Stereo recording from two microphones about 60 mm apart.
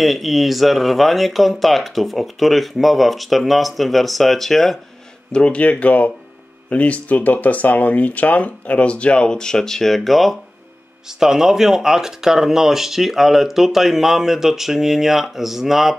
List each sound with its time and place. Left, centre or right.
0.0 s speech: centre
5.3 s speech: centre